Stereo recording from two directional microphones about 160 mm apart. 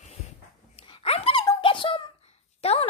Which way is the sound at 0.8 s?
35° left (ahead or behind).